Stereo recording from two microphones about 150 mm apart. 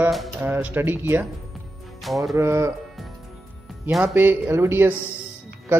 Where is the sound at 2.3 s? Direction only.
20° right (ahead or behind).